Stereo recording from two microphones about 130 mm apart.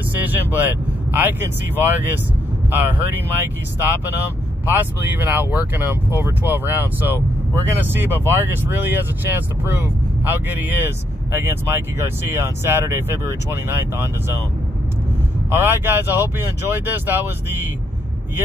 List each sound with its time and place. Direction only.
0.1 s speech: 15° right (ahead or behind)
4.6 s speech: 15° right (ahead or behind)
15.5 s speech: 15° right (ahead or behind)